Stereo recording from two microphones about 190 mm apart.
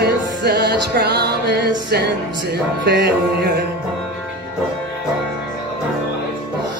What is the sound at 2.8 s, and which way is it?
Music, 60° right (ahead or behind).